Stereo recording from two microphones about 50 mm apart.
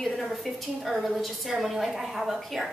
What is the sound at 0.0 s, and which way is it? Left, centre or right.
A woman's voice, centre.